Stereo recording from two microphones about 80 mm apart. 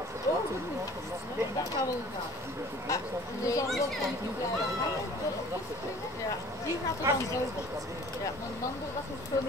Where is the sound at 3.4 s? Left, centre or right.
Left.